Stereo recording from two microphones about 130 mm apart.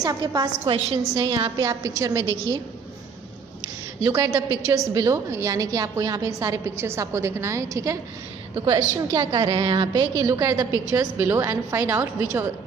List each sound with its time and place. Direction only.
0.0 s a woman's voice: 30° right (ahead or behind)
4.0 s a woman's voice: 25° right (ahead or behind)
10.1 s a woman's voice: 25° right (ahead or behind)